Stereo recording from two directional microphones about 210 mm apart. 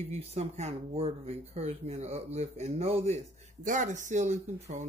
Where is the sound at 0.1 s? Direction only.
30° right (ahead or behind).